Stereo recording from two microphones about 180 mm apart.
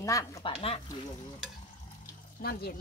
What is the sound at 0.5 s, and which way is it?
Speech, 30° left (ahead or behind).